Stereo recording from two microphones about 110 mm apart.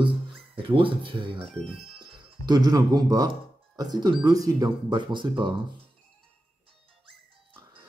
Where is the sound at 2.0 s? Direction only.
35° right (ahead or behind).